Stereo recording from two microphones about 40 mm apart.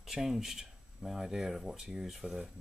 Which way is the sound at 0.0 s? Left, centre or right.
Centre.